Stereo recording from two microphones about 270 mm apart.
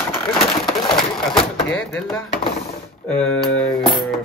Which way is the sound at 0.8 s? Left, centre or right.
Centre.